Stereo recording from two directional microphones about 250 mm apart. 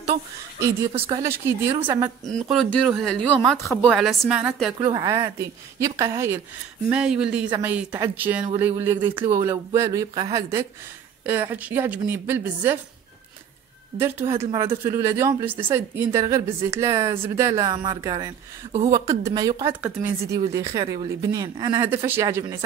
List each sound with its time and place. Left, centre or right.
0.9 s speech: right
1.2 s speech: centre
2.2 s speech: right
2.5 s a woman's voice: centre
4.7 s speech: centre
11.2 s speech: centre
13.9 s speech: centre